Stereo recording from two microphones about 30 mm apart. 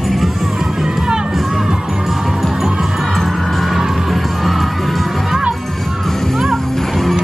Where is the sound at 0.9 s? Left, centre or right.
Centre.